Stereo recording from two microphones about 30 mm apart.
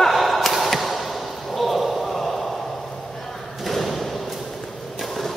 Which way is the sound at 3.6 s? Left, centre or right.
Centre.